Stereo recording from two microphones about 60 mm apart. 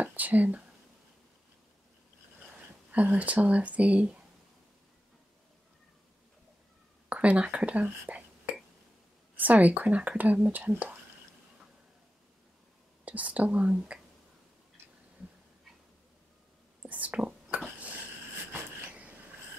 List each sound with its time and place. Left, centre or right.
0.0 s speech: right
2.9 s speech: right
7.1 s speech: right
9.4 s speech: right
13.0 s speech: right
16.8 s whispering: right
18.5 s a sound: right